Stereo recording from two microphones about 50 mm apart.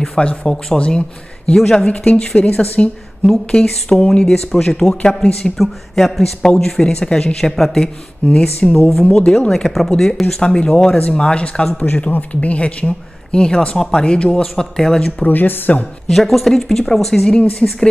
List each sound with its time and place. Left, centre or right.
0.2 s speech: centre
1.6 s speech: centre
1.9 s speech: left
3.3 s speech: centre
5.6 s speech: centre
6.4 s speech: centre
8.3 s speech: left
9.5 s speech: centre; by 11.8 s left
11.8 s speech: left; by 15.0 s centre
15.2 s a woman's voice: left
16.1 s speech: centre